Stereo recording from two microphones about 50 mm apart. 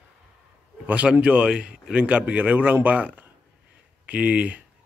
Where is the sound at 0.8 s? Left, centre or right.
Right.